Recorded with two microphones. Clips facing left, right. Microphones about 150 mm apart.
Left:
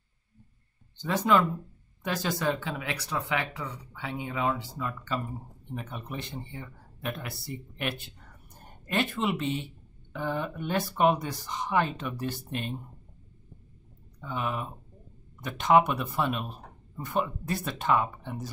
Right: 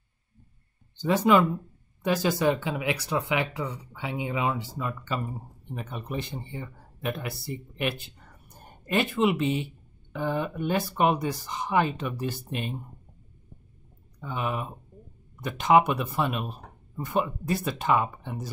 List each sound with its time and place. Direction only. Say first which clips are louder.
1.0 s speech: right 3 dB; 5° right (ahead or behind)
14.2 s speech: right 2 dB; 5° right (ahead or behind)